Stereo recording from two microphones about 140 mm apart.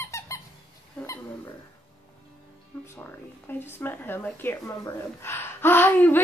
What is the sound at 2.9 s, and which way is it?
Speech, 15° left (ahead or behind).